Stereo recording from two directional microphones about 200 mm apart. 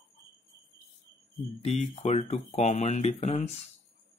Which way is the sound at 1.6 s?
35° left (ahead or behind).